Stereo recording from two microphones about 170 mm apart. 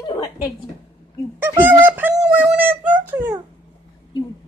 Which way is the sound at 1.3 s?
10° right (ahead or behind).